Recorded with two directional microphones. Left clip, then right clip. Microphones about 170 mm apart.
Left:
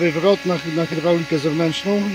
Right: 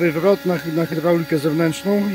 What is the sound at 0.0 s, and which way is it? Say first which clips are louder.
Speech: even; 10° right (ahead or behind).